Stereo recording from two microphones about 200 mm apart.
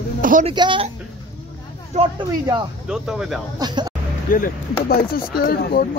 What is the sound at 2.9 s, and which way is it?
Speech, centre (ahead or behind).